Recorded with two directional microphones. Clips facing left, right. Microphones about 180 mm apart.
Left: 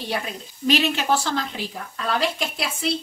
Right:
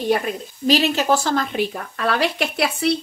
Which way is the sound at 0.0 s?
50° right (ahead or behind).